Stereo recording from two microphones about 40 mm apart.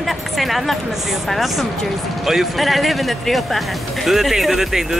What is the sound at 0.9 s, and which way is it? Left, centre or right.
Speech, centre.